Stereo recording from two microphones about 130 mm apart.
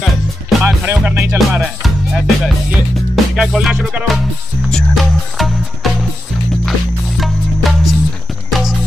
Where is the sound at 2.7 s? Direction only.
5° right (ahead or behind).